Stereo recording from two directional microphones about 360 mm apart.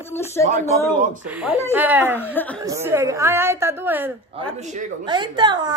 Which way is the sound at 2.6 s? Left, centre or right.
Centre.